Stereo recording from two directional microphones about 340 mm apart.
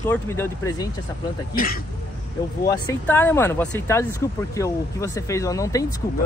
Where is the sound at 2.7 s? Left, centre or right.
Centre.